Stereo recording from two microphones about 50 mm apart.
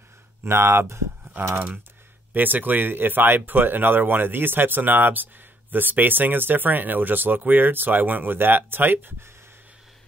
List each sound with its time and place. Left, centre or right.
0.4 s speech: right
2.3 s speech: right